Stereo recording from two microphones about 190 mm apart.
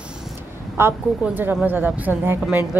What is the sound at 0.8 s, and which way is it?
A woman's voice, 10° right (ahead or behind).